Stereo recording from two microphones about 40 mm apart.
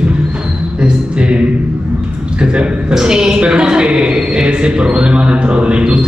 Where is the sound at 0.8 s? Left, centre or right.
Right.